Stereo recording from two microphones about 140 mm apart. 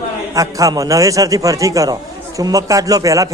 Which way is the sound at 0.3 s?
25° right (ahead or behind).